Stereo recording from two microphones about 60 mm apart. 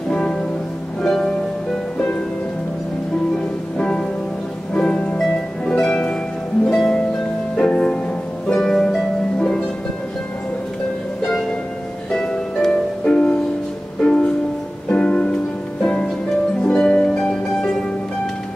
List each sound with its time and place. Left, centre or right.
0.1 s music: centre
3.7 s music: centre
5.3 s harp: centre
6.6 s music: centre
8.5 s harp: centre
12.1 s harp: centre
14.0 s music: centre